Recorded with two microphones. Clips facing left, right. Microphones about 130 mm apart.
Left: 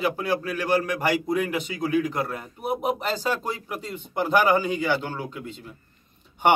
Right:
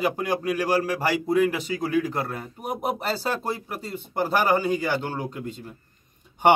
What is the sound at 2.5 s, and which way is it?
A man's voice, 40° right (ahead or behind).